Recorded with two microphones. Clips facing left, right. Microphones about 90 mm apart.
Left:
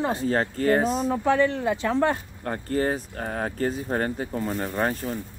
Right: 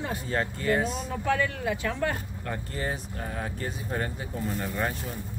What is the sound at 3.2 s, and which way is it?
Speech, 55° left (ahead or behind).